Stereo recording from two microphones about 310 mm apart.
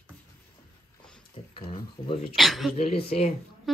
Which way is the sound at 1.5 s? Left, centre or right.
Centre.